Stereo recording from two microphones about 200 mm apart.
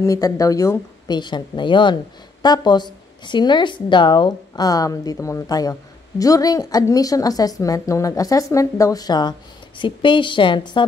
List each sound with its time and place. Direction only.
0.0 s a woman's voice: 15° left (ahead or behind)